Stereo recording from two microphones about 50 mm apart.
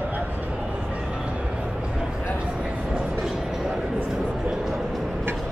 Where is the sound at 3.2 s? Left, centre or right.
Centre.